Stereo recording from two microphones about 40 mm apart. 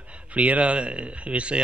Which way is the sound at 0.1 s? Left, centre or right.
Right.